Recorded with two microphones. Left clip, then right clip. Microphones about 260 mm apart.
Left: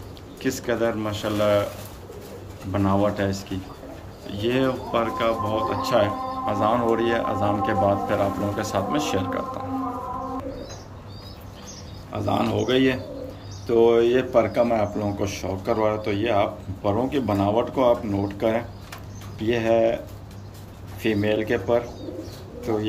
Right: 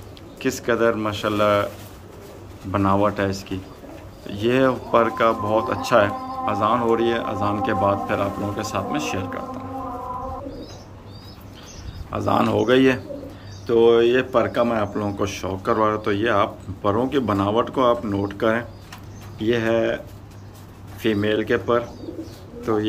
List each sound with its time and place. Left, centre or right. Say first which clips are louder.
0.4 s speech: right 4 dB; centre
2.7 s speech: right 3 dB; centre
12.1 s speech: right 4 dB; centre
21.0 s speech: right 2 dB; centre